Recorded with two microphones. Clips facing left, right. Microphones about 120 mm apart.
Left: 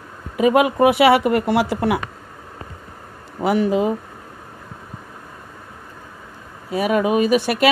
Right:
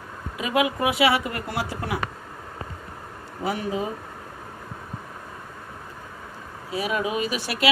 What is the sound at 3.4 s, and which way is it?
Speech, 80° left.